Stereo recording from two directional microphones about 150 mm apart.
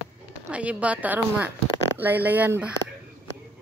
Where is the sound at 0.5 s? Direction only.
10° right (ahead or behind).